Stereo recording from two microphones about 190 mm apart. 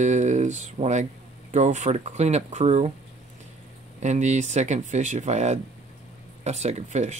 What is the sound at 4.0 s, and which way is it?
Speech, 35° right (ahead or behind).